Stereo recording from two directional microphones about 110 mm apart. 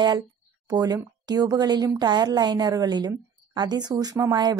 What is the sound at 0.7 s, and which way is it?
A woman's voice, 35° right (ahead or behind).